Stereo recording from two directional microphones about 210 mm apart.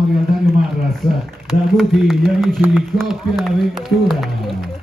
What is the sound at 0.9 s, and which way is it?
A man's voice, centre (ahead or behind).